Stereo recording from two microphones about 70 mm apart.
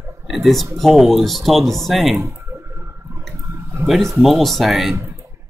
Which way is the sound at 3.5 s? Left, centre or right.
Right.